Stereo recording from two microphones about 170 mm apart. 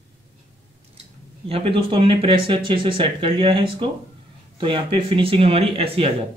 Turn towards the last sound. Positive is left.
turn(degrees=-35)  # may be behind; listen again after turning